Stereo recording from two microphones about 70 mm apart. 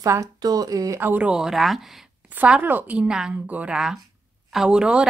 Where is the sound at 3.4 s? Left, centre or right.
Right.